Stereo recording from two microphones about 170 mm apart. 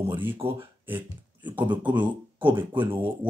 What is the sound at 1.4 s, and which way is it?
Speech, 10° right (ahead or behind).